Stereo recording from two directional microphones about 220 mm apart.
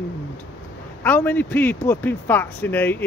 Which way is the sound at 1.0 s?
10° left (ahead or behind).